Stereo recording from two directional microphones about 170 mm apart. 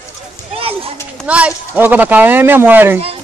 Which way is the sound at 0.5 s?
35° right (ahead or behind).